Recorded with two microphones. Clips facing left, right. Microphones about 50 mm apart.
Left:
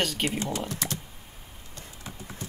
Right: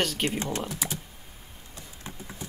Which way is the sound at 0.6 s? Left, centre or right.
Centre.